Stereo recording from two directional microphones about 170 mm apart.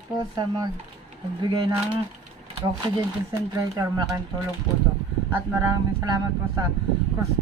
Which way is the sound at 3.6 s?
20° right (ahead or behind).